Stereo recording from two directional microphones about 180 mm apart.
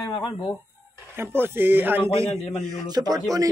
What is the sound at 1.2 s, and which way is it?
A man's voice, 10° right (ahead or behind).